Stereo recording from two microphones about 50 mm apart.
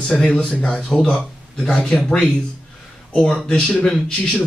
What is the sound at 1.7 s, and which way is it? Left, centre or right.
Speech, centre.